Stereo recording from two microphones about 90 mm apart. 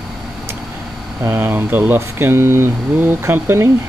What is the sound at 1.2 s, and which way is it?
Speech, 25° right (ahead or behind).